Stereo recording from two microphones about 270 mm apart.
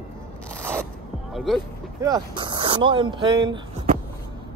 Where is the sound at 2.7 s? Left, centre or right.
Centre.